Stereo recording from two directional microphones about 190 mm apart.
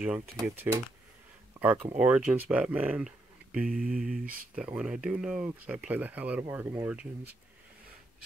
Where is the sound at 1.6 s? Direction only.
10° right (ahead or behind).